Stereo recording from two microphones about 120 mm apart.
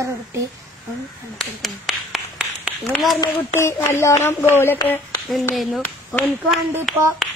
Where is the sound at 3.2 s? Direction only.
25° left (ahead or behind).